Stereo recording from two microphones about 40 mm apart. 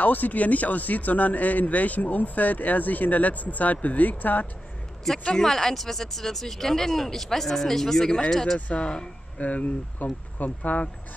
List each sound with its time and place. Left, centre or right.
0.0 s a man's voice: left
5.2 s speech: left
9.4 s a man's voice: left